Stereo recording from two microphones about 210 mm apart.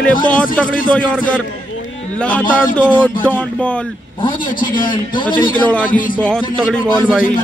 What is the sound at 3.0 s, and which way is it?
Speech, 5° left (ahead or behind).